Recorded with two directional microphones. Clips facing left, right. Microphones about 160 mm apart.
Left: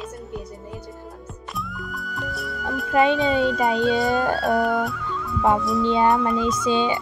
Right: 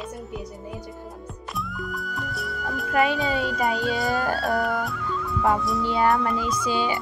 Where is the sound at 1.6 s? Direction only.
Centre (ahead or behind).